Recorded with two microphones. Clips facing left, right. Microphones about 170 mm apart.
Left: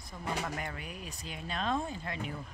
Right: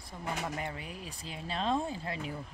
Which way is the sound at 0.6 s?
30° right (ahead or behind).